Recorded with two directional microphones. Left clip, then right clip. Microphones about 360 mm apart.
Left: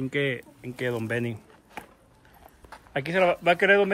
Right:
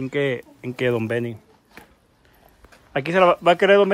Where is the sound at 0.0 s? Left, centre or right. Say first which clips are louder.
Right 4 dB; centre.